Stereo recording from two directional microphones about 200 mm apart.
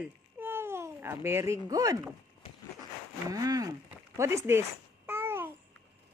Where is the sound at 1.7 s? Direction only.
15° right (ahead or behind).